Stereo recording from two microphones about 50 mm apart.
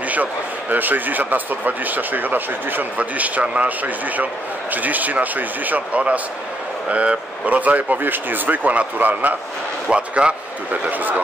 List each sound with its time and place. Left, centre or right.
0.1 s speech: right
9.8 s a man's voice: right
10.9 s speech: right